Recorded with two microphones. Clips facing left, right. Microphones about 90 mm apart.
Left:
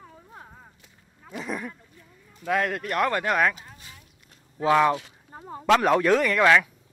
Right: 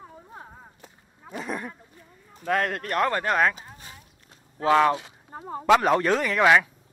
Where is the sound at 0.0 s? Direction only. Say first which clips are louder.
Right 3 dB; 15° right (ahead or behind).